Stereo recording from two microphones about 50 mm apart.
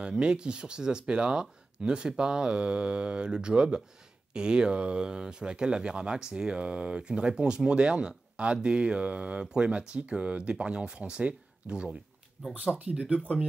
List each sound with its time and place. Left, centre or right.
0.0 s speech: centre